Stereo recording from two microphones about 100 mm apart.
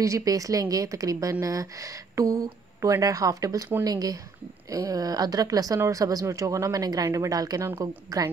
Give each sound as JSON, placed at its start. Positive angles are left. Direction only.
{"t": 0.0, "sound": "speech", "side_deg": -35}